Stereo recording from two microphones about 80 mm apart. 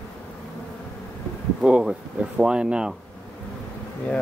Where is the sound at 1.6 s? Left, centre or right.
Centre.